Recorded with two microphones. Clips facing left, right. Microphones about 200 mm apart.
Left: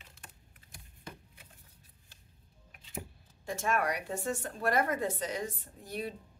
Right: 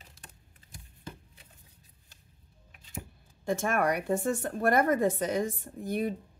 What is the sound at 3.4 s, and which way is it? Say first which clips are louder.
Speech: right 4 dB; 50° right (ahead or behind).